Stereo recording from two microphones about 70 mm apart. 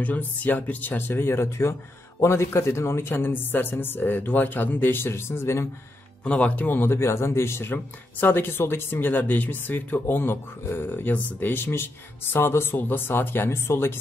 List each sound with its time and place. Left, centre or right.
0.0 s speech: left
6.2 s speech: centre; by 13.9 s left